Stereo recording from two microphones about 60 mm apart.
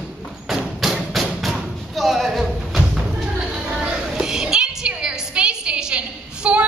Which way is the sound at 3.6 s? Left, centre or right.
Centre.